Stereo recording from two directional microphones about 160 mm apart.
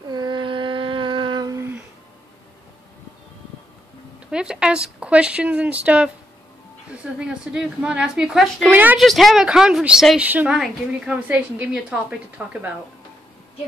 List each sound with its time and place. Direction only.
0.1 s humming: 30° right (ahead or behind)
4.3 s speech: 5° right (ahead or behind)
7.2 s a woman's voice: 5° right (ahead or behind)
9.0 s a woman's voice: centre (ahead or behind)